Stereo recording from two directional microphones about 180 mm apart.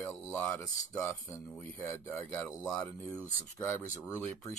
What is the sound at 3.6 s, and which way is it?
Speech, 15° left (ahead or behind).